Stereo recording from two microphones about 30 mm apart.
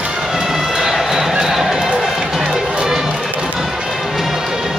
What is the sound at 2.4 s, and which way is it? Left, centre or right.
Run, centre.